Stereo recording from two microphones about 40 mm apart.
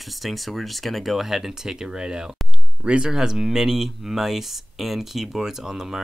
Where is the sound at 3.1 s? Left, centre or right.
Centre.